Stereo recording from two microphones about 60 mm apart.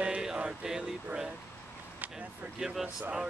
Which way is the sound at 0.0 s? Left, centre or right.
Centre.